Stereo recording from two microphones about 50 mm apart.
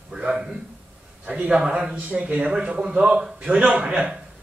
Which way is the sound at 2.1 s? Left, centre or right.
Right.